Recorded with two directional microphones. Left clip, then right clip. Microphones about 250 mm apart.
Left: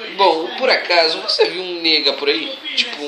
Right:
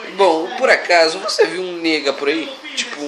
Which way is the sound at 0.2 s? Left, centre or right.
Right.